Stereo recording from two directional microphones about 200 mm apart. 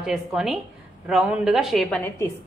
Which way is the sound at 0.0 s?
Centre (ahead or behind).